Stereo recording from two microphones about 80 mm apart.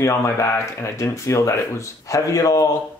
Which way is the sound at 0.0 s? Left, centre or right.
Left.